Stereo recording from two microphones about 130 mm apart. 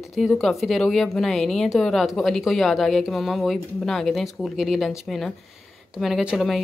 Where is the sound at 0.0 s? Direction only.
Centre (ahead or behind).